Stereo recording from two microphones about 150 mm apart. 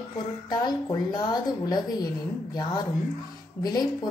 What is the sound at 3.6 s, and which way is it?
Speech, 25° left (ahead or behind).